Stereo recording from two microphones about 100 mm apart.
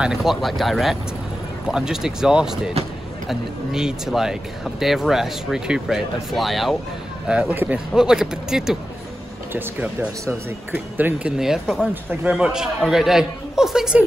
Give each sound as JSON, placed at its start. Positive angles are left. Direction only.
{"t": 0.0, "sound": "speech", "side_deg": -5}
{"t": 7.2, "sound": "a man's voice", "side_deg": -15}
{"t": 7.9, "sound": "speech", "side_deg": -5}
{"t": 9.5, "sound": "speech", "side_deg": -20}
{"t": 11.3, "sound": "speech", "side_deg": -5}
{"t": 11.9, "sound": "a man's voice", "side_deg": -15}